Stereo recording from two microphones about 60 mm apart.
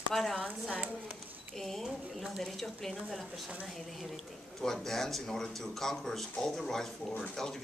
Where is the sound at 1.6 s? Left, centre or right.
Centre.